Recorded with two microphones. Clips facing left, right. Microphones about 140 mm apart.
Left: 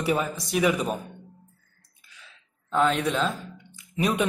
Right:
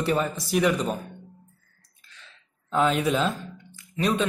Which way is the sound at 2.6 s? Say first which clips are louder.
Right 1 dB; 5° right (ahead or behind).